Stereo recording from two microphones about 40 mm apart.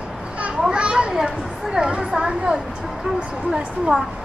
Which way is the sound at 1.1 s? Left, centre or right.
Centre.